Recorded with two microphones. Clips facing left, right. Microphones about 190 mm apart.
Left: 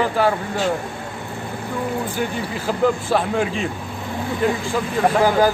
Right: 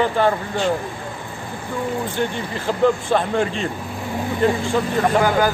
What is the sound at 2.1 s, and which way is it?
A man's voice, 5° left (ahead or behind).